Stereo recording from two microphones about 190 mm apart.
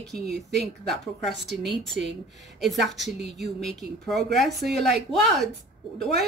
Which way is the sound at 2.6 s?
Centre (ahead or behind).